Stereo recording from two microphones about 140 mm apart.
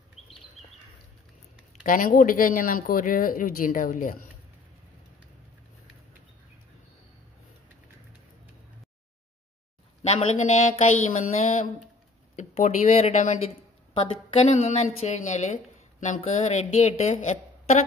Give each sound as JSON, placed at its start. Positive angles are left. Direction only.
{"t": 1.8, "sound": "speech", "side_deg": 75}
{"t": 10.0, "sound": "a woman's voice", "side_deg": 50}